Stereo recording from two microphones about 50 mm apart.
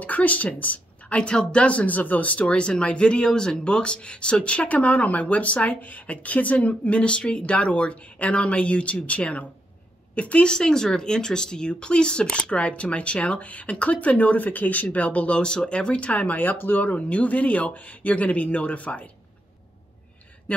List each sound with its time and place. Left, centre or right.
0.0 s a sound: left
1.1 s speech: centre
20.5 s speech: left